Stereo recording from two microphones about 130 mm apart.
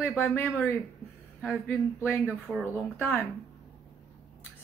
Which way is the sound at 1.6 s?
15° left (ahead or behind).